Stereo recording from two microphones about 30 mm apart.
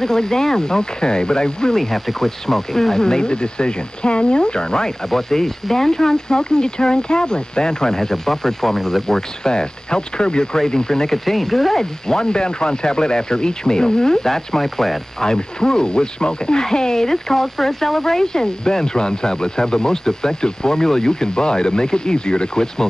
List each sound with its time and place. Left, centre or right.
0.0 s speech: centre
1.8 s speech: centre; by 4.9 s left
5.1 s speech: centre
11.2 s speech: centre
11.8 s speech: left
15.2 s speech: left